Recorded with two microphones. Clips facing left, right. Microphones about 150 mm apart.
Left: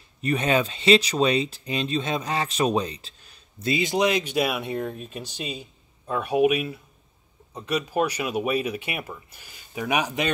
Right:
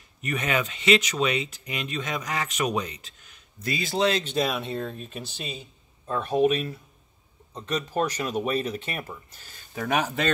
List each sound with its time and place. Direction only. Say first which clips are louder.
0.2 s speech: left 5 dB; 30° left (ahead or behind)
3.7 s speech: left 2 dB; 15° left (ahead or behind)